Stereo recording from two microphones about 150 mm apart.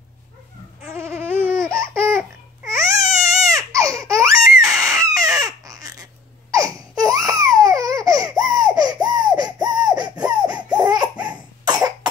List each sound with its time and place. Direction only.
0.8 s a sound: 15° right (ahead or behind)
1.6 s laughter: 5° left (ahead or behind)
2.0 s babbling: 15° right (ahead or behind)
3.4 s baby cry: 20° right (ahead or behind)
4.6 s squeak: 20° right (ahead or behind)
6.5 s laughter: 25° right (ahead or behind)
8.5 s baby laughter: 25° right (ahead or behind)
9.2 s a sound: 25° right (ahead or behind)
10.4 s laughter: 5° right (ahead or behind)
11.6 s cough: 25° right (ahead or behind)